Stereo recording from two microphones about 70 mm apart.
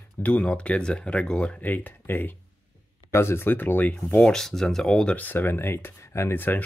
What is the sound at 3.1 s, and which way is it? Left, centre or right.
Speech, left.